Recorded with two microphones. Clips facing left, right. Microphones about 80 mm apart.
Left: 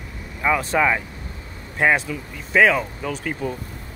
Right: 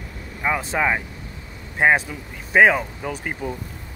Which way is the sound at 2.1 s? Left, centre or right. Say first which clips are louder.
Left 3 dB; centre.